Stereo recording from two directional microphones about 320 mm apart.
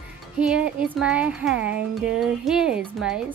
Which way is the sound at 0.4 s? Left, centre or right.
Centre.